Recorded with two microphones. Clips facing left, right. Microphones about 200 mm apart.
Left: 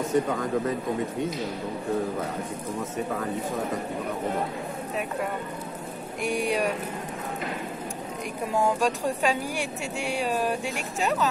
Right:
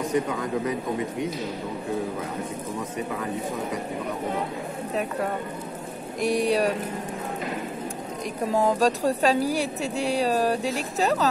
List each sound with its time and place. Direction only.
6.2 s speech: 35° right (ahead or behind)
8.5 s speech: 35° right (ahead or behind)